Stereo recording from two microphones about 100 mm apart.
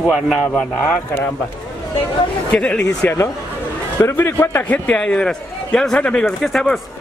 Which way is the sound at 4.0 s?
25° left (ahead or behind).